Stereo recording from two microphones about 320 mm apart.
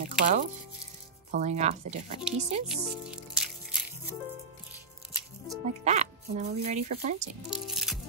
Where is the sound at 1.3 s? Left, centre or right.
Right.